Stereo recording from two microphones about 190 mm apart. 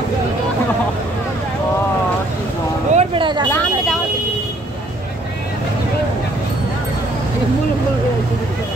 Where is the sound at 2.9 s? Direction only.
30° right (ahead or behind).